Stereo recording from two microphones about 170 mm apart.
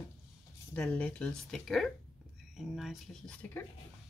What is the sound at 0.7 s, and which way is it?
Speech, 10° left (ahead or behind).